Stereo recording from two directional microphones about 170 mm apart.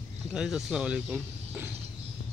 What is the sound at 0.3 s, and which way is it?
Speech, 5° right (ahead or behind).